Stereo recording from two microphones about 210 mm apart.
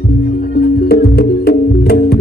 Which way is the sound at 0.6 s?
45° left (ahead or behind).